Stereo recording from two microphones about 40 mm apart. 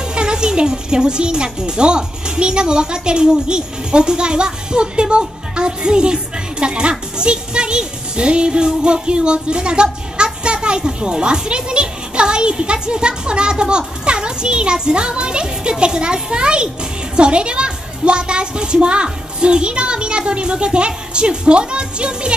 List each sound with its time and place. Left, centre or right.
0.1 s speech: right